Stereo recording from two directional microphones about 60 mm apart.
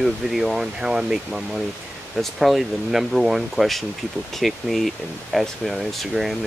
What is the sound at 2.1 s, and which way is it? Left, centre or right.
Speech, centre.